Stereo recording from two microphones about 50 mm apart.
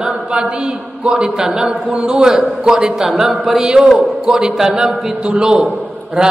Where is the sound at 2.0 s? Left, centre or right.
Centre.